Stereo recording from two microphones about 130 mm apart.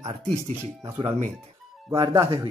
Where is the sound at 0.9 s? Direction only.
50° right (ahead or behind).